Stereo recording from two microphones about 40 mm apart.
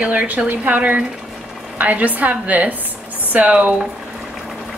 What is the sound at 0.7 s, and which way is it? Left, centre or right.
A woman's voice, right.